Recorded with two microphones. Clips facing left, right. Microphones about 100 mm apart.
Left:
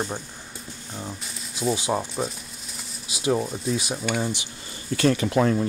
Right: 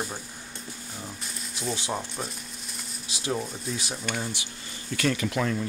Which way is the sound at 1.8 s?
20° left (ahead or behind).